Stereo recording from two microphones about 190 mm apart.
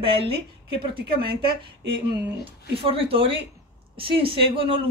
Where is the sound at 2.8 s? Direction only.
30° right (ahead or behind).